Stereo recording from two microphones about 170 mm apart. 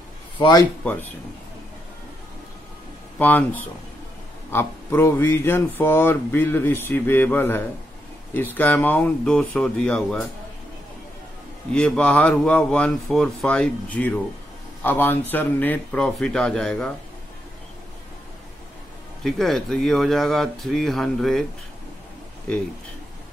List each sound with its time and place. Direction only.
0.4 s speech: 25° left (ahead or behind)
3.2 s speech: 10° left (ahead or behind)
4.5 s speech: 15° left (ahead or behind)
11.7 s speech: 5° left (ahead or behind)
19.2 s speech: centre (ahead or behind)